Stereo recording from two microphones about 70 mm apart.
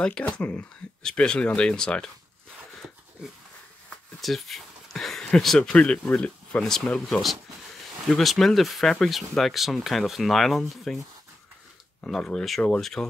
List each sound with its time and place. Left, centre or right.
0.0 s speech: centre
3.9 s a sound: centre
5.6 s speech: centre
7.1 s speech: centre
12.0 s speech: centre